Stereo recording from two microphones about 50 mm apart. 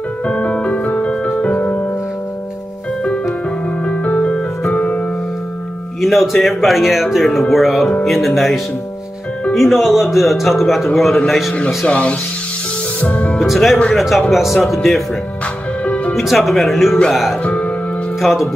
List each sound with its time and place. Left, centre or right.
0.3 s music: left
3.8 s music: left
4.7 s music: left
5.9 s music: centre
6.4 s speech: centre
11.5 s speech: left
13.5 s speech: centre
15.8 s music: left
16.2 s speech: centre
17.4 s music: left
18.2 s speech: centre